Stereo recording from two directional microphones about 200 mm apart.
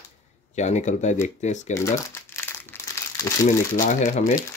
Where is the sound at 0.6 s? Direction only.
35° left (ahead or behind).